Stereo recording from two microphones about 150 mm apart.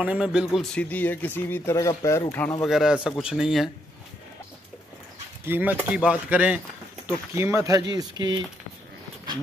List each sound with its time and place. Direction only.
0.0 s speech: 5° right (ahead or behind)
0.7 s speech: 10° left (ahead or behind)
2.6 s speech: centre (ahead or behind)
5.4 s speech: 10° right (ahead or behind); by 8.5 s 30° right (ahead or behind)